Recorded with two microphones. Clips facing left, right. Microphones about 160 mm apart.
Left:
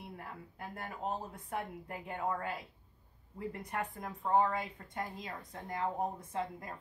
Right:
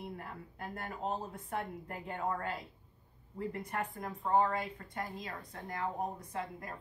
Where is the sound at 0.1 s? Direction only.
5° left (ahead or behind).